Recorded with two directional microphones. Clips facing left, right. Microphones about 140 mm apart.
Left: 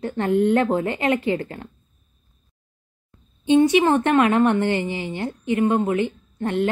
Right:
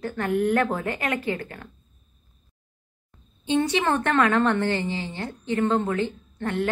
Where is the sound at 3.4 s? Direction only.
15° left (ahead or behind).